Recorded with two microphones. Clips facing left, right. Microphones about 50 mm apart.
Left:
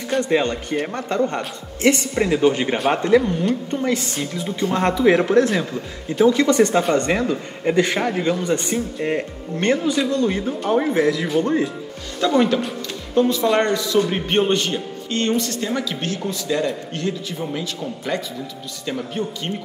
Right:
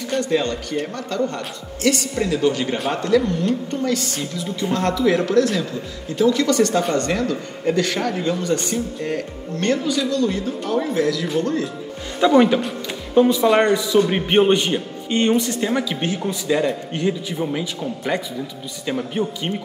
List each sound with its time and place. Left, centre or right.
0.2 s speech: left
12.3 s a man's voice: centre